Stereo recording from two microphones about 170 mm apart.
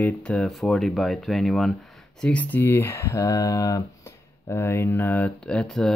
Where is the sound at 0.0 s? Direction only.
5° left (ahead or behind).